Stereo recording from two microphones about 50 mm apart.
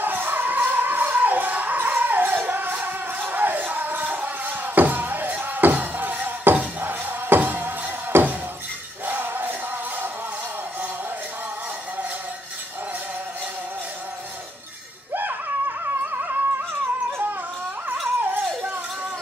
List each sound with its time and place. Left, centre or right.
0.0 s music: right
16.1 s music: right